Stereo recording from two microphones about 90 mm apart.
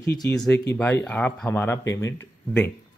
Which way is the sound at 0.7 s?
20° left (ahead or behind).